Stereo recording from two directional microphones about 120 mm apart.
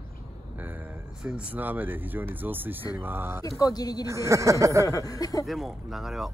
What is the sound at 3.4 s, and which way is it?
Speech, 30° left (ahead or behind).